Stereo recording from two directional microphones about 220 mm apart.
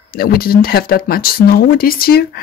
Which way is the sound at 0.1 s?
45° left (ahead or behind).